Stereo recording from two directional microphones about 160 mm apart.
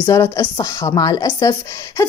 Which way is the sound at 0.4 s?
25° left (ahead or behind).